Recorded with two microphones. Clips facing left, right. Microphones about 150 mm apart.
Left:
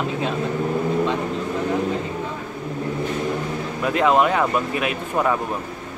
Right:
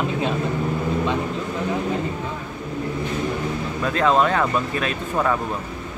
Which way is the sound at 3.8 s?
15° left (ahead or behind).